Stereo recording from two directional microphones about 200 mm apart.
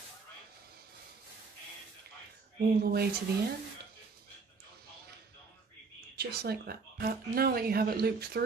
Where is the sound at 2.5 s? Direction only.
50° right (ahead or behind).